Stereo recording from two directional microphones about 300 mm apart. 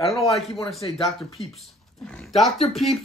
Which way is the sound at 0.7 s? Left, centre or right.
Centre.